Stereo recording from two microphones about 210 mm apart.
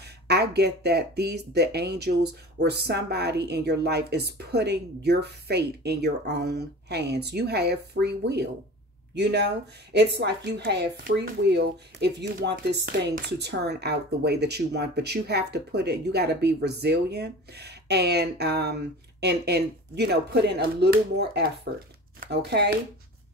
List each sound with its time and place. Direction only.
0.3 s speech: 50° right (ahead or behind)